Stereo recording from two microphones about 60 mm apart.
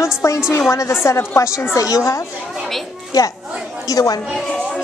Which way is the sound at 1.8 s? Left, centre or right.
Left.